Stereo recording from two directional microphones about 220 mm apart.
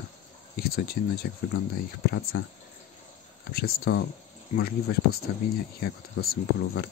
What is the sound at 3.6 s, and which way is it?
Speech, 45° left (ahead or behind).